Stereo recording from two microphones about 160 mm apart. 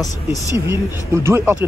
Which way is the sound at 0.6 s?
15° right (ahead or behind).